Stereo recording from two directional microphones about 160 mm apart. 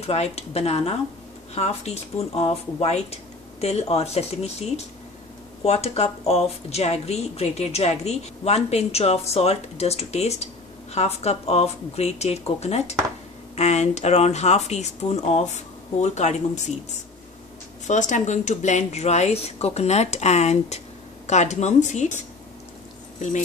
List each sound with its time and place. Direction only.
0.0 s speech: 40° left (ahead or behind)
17.8 s speech: 50° left (ahead or behind)